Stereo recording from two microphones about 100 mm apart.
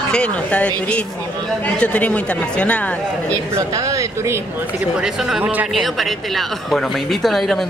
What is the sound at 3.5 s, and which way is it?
Speech, 35° right (ahead or behind).